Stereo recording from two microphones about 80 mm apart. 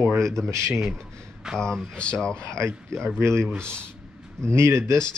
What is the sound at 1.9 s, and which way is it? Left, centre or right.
Speech, centre.